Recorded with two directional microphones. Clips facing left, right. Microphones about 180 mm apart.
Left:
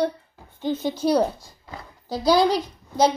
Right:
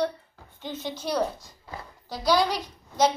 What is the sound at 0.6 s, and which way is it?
Speech, 50° left (ahead or behind).